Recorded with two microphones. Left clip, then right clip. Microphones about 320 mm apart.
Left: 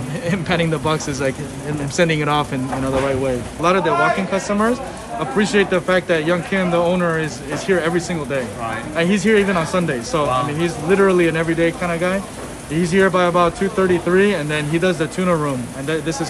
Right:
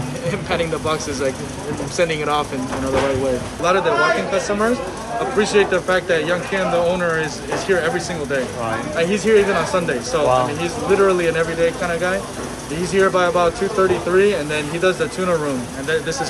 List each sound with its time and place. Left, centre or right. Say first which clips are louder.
0.3 s speech: left 1 dB; left
3.6 s speech: even; left